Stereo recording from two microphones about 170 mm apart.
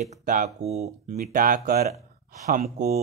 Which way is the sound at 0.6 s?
40° right (ahead or behind).